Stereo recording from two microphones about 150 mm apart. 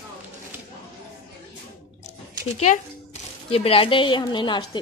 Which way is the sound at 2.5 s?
50° left (ahead or behind).